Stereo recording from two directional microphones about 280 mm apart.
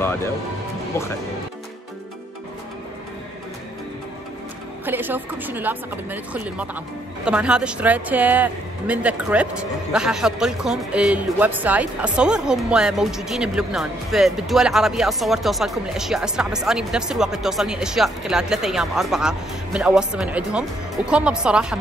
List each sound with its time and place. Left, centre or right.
4.8 s speech: centre